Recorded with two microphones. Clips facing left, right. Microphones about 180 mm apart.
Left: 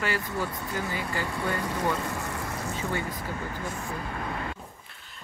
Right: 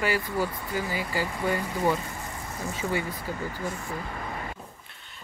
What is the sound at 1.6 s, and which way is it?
Speech, 75° left (ahead or behind).